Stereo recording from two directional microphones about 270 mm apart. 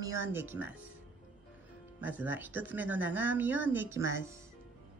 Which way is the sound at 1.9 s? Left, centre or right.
Centre.